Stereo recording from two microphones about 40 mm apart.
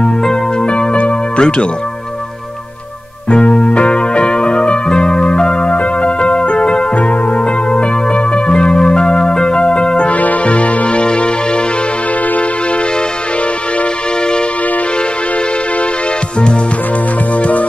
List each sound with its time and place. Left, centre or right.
0.0 s music: centre
3.3 s music: left
10.1 s music: left
17.4 s music: left